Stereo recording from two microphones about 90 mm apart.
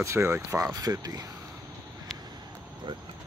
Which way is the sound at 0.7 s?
45° right (ahead or behind).